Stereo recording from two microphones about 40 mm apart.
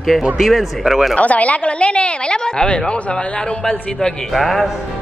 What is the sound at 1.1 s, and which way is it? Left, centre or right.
Speech, left.